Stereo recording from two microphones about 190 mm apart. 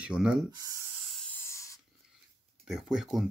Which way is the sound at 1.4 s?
15° left (ahead or behind).